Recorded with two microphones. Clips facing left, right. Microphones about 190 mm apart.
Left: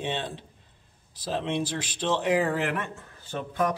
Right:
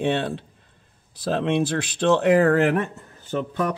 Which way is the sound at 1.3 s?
65° right (ahead or behind).